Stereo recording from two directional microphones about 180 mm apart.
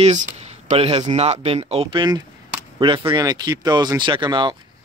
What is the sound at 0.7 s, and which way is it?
Speech, 30° right (ahead or behind).